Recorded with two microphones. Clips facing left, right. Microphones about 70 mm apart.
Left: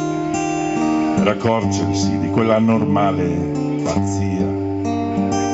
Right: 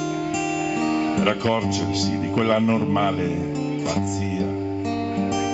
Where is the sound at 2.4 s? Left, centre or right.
Centre.